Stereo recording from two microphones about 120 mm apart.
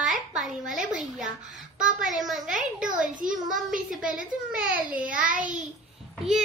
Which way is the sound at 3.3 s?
5° right (ahead or behind).